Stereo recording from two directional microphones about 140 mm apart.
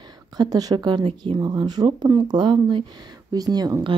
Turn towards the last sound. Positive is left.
turn(degrees=-30)  # may be behind; listen again after turning